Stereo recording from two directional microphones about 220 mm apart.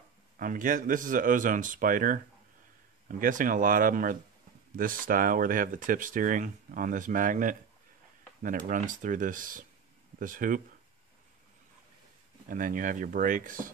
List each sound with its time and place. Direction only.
0.4 s speech: 35° right (ahead or behind)
12.4 s speech: 40° right (ahead or behind)